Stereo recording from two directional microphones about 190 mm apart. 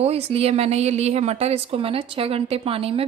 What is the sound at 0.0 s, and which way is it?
A woman's voice, 30° right (ahead or behind).